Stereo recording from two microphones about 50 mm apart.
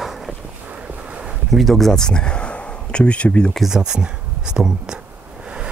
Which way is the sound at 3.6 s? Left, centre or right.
Centre.